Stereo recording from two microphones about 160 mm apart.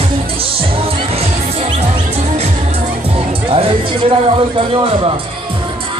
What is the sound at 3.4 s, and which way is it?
Speech, 35° right (ahead or behind).